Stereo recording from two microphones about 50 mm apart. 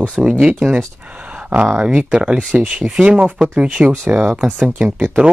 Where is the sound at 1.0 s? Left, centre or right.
Right.